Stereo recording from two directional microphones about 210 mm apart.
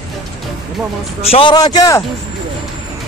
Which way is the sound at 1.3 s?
25° left (ahead or behind).